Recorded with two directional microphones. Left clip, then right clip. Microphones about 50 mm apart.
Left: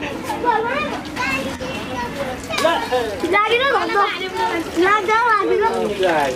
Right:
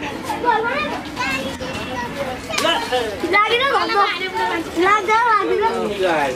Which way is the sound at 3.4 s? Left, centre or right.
Right.